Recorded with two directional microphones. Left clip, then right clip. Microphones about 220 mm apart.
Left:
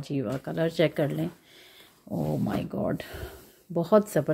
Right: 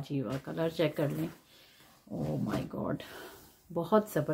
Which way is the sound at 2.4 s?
30° left (ahead or behind).